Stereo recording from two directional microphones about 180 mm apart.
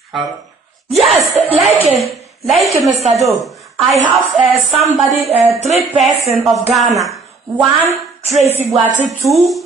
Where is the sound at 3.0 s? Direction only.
35° right (ahead or behind).